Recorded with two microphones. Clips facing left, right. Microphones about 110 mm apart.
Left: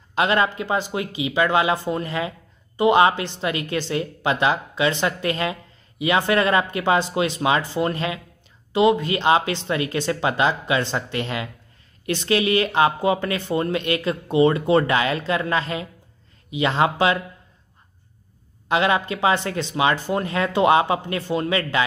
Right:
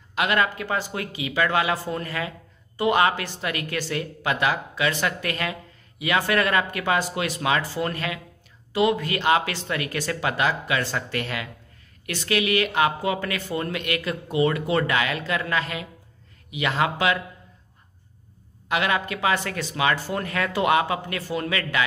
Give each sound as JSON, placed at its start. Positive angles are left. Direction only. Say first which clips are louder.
{"t": 0.1, "sound": "a woman's voice", "louder": "left 3 dB", "side_deg": 30}
{"t": 18.7, "sound": "a woman's voice", "louder": "left 4 dB", "side_deg": 25}